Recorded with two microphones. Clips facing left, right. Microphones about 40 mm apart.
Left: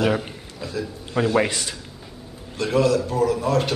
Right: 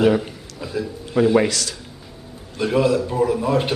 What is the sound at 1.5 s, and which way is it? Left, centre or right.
Speech, left.